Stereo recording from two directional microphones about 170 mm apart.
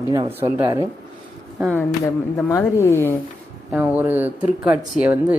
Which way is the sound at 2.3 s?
15° left (ahead or behind).